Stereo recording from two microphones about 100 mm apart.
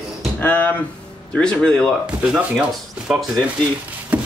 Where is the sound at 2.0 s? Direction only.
10° right (ahead or behind).